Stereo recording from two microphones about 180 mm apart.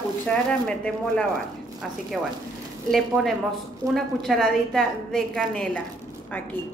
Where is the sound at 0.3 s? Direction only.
5° left (ahead or behind).